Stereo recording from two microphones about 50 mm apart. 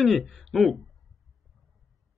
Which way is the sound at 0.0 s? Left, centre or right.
Centre.